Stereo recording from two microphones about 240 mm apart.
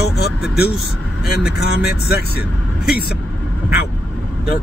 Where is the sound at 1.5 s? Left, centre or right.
Left.